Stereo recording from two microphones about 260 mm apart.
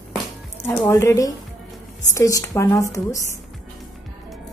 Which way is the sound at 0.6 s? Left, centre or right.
Centre.